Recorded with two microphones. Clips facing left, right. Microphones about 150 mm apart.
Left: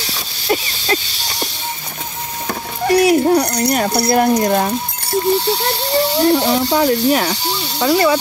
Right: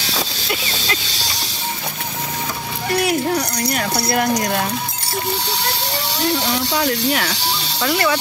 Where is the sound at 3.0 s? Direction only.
35° left (ahead or behind).